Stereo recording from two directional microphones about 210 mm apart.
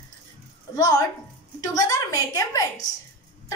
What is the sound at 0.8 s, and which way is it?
A woman's voice, 15° left (ahead or behind).